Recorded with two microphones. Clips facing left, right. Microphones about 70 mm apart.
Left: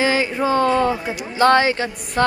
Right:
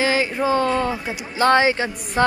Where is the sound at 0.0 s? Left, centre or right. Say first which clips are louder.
Left 1 dB; centre.